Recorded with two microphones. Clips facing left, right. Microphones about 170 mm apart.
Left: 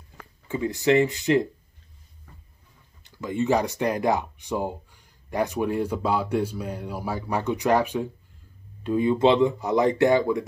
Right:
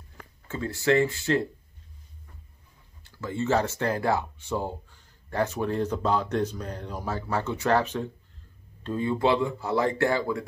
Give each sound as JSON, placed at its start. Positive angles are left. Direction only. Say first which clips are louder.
{"t": 0.5, "sound": "speech", "louder": "left 3 dB", "side_deg": 15}
{"t": 3.0, "sound": "speech", "louder": "left 4 dB", "side_deg": 15}